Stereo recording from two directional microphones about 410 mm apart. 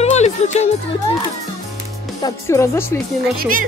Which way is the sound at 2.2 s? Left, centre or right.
Centre.